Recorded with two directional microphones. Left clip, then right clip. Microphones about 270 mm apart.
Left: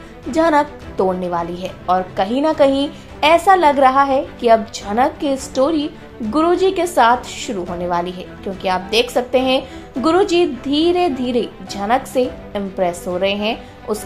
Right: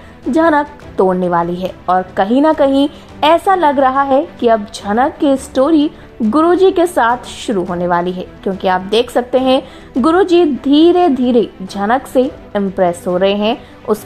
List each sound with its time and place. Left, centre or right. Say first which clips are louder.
0.3 s a woman's voice: right 3 dB; centre